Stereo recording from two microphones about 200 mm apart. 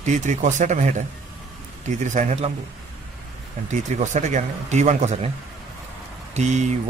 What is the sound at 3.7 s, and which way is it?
Speech, 35° right (ahead or behind).